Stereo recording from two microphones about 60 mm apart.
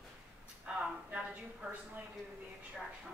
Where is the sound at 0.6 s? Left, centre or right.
Centre.